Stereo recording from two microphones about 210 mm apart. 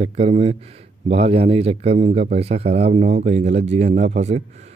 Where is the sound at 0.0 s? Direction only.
30° right (ahead or behind).